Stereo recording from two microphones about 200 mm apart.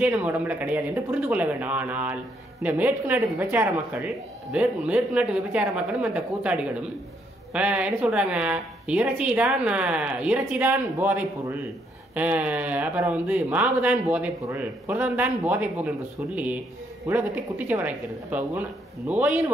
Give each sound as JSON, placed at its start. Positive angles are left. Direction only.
{"t": 0.0, "sound": "a woman's voice", "side_deg": -10}
{"t": 17.1, "sound": "a woman's voice", "side_deg": -10}